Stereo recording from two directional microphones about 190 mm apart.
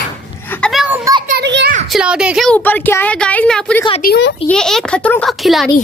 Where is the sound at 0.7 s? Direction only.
5° right (ahead or behind).